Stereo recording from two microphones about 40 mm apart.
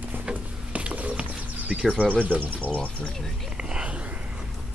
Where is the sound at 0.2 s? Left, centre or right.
Right.